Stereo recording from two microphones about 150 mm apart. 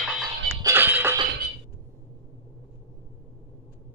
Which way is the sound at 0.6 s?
15° right (ahead or behind).